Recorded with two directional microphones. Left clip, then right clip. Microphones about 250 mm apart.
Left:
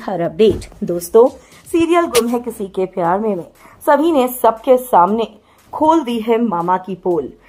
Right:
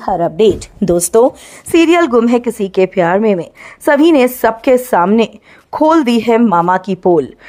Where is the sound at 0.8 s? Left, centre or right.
Right.